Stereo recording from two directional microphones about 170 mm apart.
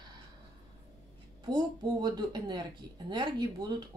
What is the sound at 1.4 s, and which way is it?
Speech, 25° right (ahead or behind).